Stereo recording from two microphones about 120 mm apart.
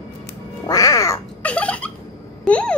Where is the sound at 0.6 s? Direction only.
30° left (ahead or behind).